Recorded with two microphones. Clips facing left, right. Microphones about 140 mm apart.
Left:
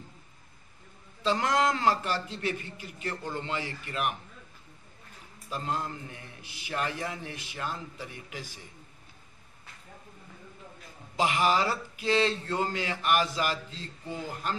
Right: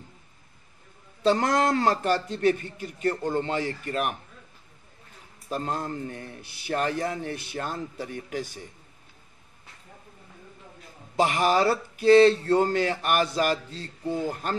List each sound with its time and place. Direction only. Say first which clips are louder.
1.2 s a man's voice: right 4 dB; 40° right (ahead or behind)
5.5 s a man's voice: right 4 dB; 45° right (ahead or behind)
11.1 s a man's voice: right 4 dB; 50° right (ahead or behind)